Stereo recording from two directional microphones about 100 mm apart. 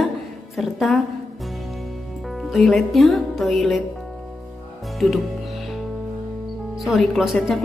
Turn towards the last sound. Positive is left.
turn(degrees=0)  # may be behind; listen again after turning